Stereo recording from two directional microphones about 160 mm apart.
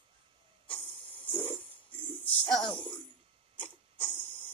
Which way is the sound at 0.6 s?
10° left (ahead or behind).